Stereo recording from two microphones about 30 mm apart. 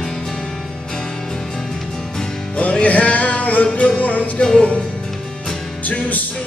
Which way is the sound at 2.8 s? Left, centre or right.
Left.